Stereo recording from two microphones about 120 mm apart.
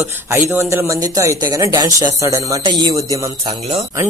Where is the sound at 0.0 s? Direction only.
20° right (ahead or behind).